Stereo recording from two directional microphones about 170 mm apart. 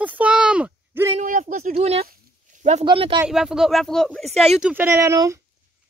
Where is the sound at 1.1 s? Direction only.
45° right (ahead or behind); by 3.2 s 30° right (ahead or behind).